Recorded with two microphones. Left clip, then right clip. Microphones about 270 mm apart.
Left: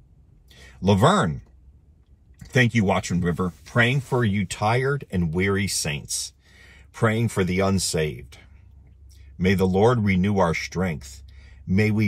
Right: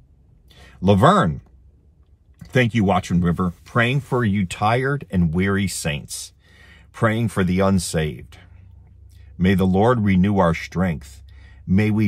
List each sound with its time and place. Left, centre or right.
0.5 s speech: centre
3.2 s speech: centre